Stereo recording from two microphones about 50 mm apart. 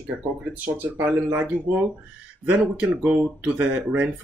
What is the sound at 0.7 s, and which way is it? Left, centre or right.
Speech, right.